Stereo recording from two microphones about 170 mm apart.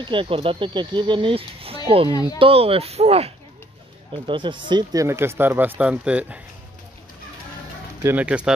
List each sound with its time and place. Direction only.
0.0 s speech: 30° right (ahead or behind)
2.0 s speech: 20° left (ahead or behind)
2.3 s speech: 35° right (ahead or behind); by 6.4 s 5° right (ahead or behind)
8.0 s speech: 10° right (ahead or behind)